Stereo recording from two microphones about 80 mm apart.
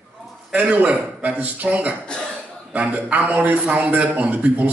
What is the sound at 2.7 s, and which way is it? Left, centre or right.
A man's voice, centre.